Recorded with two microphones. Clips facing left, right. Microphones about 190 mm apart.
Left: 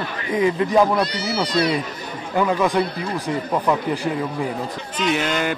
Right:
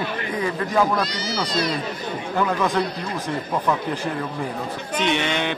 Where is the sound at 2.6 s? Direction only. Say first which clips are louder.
Left 2 dB; 15° left (ahead or behind).